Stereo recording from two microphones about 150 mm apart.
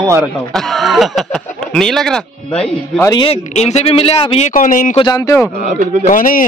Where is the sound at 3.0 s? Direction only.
25° left (ahead or behind).